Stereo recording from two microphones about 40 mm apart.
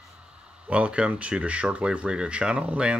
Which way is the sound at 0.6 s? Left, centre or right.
Right.